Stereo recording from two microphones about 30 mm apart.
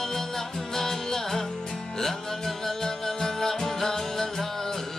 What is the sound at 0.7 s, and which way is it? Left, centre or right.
Music, centre.